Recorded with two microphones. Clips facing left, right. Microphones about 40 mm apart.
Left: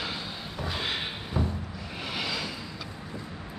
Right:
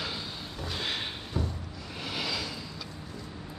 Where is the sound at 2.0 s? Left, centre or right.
Centre.